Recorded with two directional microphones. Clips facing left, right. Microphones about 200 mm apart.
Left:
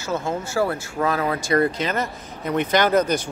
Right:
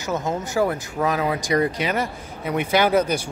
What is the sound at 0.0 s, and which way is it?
Speech, 20° right (ahead or behind).